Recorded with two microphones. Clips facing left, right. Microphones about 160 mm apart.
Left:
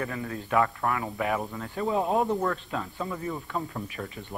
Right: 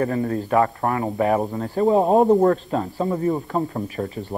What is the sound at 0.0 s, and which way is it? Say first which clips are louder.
Speech: right 11 dB; 40° right (ahead or behind).